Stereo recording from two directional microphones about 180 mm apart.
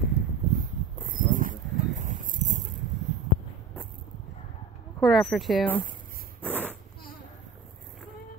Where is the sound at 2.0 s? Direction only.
45° right (ahead or behind).